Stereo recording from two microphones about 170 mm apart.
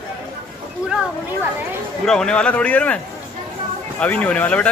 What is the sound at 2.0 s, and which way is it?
Speech, 5° left (ahead or behind).